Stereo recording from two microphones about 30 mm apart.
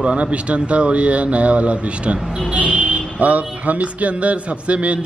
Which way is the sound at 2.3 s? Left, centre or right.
Right.